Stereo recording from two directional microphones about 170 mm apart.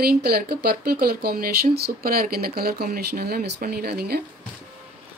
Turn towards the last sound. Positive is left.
turn(degrees=-70)  # may be behind; listen again after turning